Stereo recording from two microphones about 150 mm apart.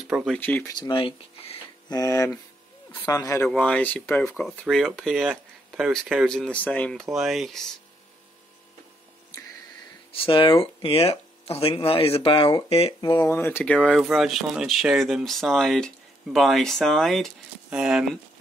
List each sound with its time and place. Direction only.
0.1 s speech: centre (ahead or behind)
0.4 s speech: 10° left (ahead or behind)
0.7 s speech: 35° left (ahead or behind)
1.9 s speech: 25° left (ahead or behind)
3.4 s speech: 5° left (ahead or behind)
10.1 s speech: 35° left (ahead or behind)
12.6 s speech: 40° left (ahead or behind)
13.0 s speech: 30° left (ahead or behind)
13.3 s speech: 15° left (ahead or behind); by 18.0 s 5° right (ahead or behind)